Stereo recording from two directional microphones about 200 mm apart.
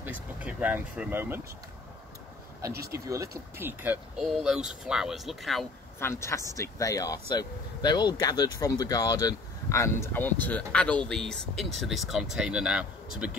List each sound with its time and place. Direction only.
0.4 s speech: 5° right (ahead or behind)
2.7 s speech: 50° right (ahead or behind)
3.1 s speech: 15° right (ahead or behind)
5.9 s speech: 15° left (ahead or behind); by 13.4 s 5° right (ahead or behind)